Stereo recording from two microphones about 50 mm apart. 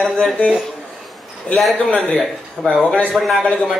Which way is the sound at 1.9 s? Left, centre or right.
Left.